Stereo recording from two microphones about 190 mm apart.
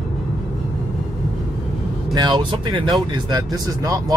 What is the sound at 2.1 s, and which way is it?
Speech, 25° right (ahead or behind).